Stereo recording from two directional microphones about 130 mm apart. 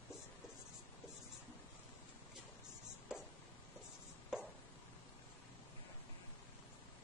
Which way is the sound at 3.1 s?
5° right (ahead or behind).